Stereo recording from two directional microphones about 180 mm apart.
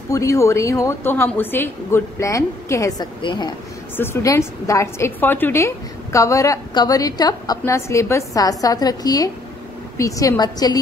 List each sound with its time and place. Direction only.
0.1 s a woman's voice: 15° left (ahead or behind)
3.9 s a woman's voice: 15° left (ahead or behind)